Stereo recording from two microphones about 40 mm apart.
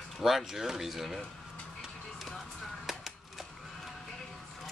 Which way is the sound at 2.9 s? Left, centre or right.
Centre.